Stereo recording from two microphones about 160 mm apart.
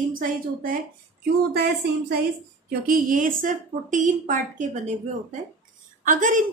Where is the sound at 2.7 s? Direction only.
60° right (ahead or behind).